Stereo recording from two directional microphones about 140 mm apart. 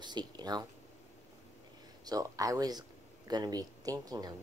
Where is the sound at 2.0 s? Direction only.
25° right (ahead or behind).